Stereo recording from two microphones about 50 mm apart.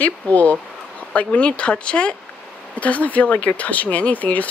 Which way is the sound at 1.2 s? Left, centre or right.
Left.